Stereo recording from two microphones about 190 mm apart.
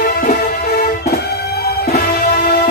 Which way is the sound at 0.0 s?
50° left (ahead or behind).